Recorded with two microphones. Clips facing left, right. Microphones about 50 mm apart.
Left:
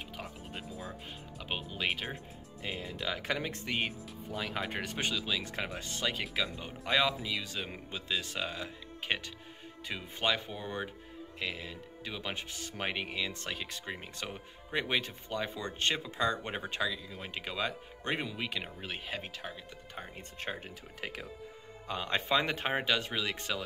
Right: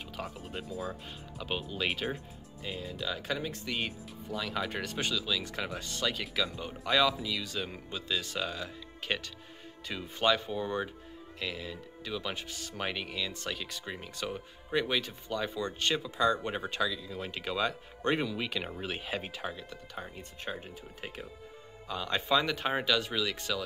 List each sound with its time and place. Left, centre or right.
0.2 s speech: centre
1.4 s speech: centre
2.6 s speech: left
3.6 s speech: left
18.8 s speech: centre
20.2 s speech: left
21.0 s speech: left
21.8 s speech: left